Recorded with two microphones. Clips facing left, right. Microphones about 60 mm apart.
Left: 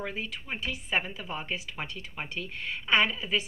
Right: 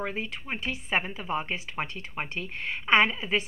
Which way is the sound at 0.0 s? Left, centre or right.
Right.